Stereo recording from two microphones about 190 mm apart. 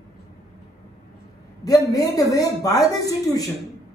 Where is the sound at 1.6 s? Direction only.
20° left (ahead or behind).